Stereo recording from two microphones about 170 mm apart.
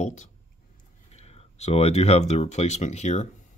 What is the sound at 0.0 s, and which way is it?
Speech, 45° left (ahead or behind).